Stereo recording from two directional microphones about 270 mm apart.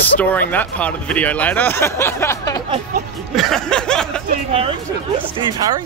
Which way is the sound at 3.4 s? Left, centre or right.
Centre.